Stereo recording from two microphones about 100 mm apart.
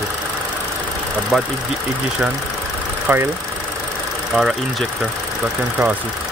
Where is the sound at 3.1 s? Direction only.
20° right (ahead or behind).